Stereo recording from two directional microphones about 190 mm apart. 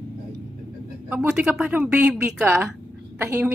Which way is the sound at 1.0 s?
5° right (ahead or behind).